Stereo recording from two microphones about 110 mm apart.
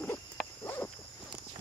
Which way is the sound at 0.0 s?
10° left (ahead or behind).